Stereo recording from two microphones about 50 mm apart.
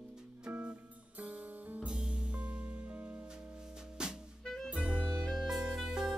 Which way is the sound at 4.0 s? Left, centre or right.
Centre.